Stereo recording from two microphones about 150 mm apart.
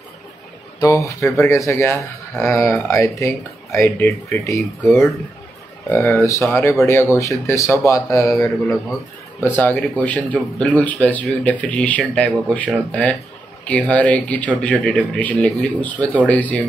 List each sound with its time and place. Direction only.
0.7 s speech: 20° left (ahead or behind)
9.4 s speech: 10° left (ahead or behind)